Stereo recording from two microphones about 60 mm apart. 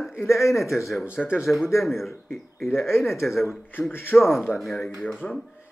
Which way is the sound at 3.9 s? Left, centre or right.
Left.